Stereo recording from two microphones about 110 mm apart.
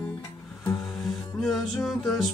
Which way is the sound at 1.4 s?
Centre (ahead or behind).